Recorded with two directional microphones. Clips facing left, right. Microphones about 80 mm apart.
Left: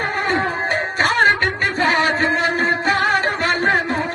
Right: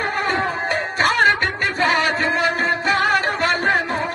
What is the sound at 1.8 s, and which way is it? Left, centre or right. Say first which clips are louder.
Music: left 1 dB; left.